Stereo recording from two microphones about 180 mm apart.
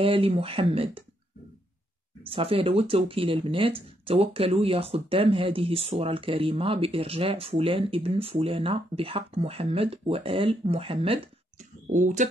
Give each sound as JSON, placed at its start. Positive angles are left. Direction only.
{"t": 0.0, "sound": "speech", "side_deg": -30}
{"t": 2.2, "sound": "speech", "side_deg": -30}
{"t": 11.9, "sound": "speech", "side_deg": -45}